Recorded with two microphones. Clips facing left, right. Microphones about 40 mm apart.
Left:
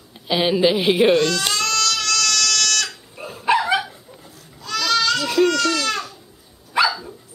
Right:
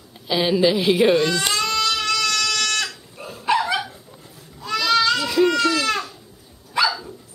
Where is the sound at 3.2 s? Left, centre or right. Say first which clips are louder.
Left 2 dB; centre.